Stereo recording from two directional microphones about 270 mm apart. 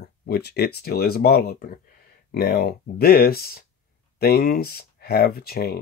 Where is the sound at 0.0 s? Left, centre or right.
Left.